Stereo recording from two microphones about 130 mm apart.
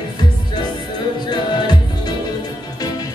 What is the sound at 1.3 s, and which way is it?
Music, 35° left (ahead or behind).